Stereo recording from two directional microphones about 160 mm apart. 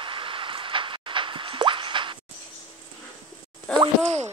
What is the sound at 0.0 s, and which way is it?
Plop, 30° right (ahead or behind).